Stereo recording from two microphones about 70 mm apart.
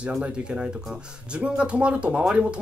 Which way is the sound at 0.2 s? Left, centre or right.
Centre.